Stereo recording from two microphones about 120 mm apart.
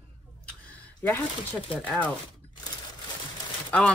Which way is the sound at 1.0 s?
15° left (ahead or behind).